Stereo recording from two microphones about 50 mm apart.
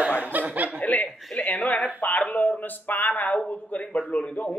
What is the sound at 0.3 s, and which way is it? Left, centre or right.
Snicker, right.